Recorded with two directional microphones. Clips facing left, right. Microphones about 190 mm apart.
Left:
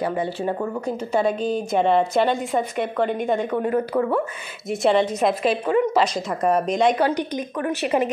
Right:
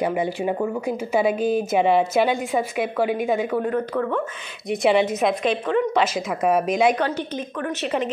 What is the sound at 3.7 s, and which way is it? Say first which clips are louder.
A woman's voice: left 2 dB; 10° left (ahead or behind).